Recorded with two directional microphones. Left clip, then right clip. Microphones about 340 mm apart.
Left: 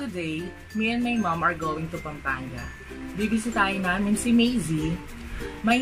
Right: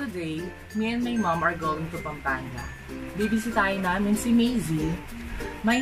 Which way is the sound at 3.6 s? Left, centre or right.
Centre.